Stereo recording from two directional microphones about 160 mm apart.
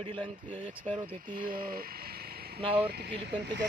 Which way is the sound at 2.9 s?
90° right.